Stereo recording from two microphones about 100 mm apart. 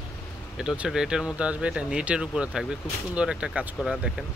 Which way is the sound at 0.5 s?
5° right (ahead or behind).